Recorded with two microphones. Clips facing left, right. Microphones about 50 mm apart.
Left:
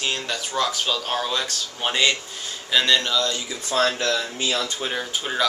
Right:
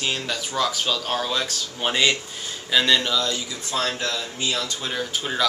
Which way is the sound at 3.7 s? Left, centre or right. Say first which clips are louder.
Left 4 dB; left.